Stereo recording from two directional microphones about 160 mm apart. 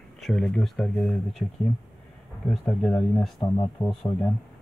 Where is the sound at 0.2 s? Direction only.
5° left (ahead or behind).